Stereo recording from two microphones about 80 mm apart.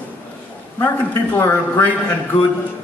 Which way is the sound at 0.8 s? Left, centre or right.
Left.